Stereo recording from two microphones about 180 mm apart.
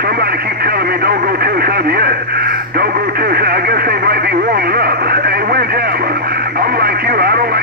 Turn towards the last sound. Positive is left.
turn(degrees=-60)  # may be behind; listen again after turning